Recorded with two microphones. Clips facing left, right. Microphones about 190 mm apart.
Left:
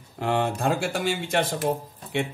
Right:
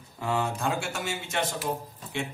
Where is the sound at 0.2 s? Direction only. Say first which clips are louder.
Left 4 dB; 70° left (ahead or behind).